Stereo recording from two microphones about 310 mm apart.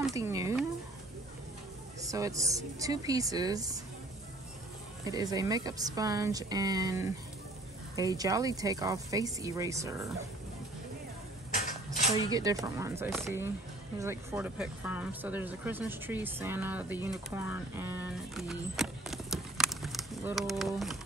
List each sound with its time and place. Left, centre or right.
0.1 s speech: centre
2.0 s speech: centre
5.0 s speech: centre
11.5 s a sound: left
12.3 s speech: centre